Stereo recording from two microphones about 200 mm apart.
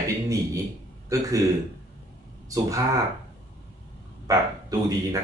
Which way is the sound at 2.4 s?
15° right (ahead or behind).